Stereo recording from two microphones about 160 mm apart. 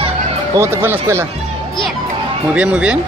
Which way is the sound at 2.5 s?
10° right (ahead or behind).